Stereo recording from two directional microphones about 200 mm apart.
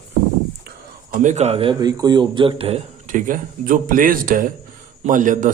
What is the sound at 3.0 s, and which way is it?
A man's voice, 40° right (ahead or behind).